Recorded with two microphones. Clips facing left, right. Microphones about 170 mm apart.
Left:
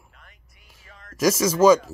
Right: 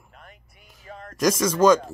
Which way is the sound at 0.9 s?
40° right (ahead or behind).